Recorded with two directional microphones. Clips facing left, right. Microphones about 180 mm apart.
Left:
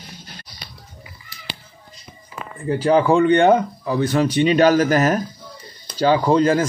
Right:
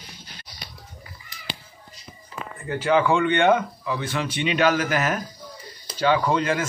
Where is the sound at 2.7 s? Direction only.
35° left (ahead or behind).